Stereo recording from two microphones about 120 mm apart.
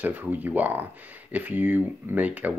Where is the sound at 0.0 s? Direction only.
15° right (ahead or behind).